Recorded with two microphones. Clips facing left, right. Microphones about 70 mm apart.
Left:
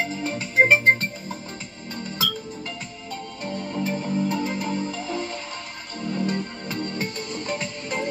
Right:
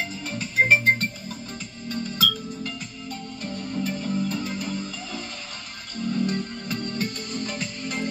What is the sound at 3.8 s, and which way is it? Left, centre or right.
Music, left.